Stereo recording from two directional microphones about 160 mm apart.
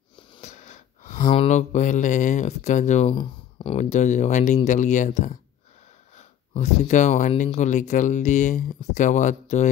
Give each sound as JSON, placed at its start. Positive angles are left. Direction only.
{"t": 0.4, "sound": "snort", "side_deg": 45}
{"t": 1.3, "sound": "speech", "side_deg": 45}
{"t": 3.2, "sound": "speech", "side_deg": 35}